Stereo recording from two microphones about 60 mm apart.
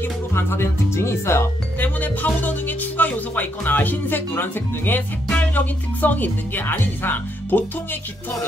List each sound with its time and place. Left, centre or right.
0.0 s speech: left
1.8 s speech: left